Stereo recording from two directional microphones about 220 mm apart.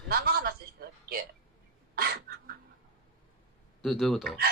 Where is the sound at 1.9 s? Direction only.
45° right (ahead or behind).